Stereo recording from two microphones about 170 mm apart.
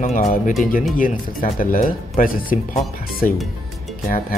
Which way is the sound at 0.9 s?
55° left (ahead or behind).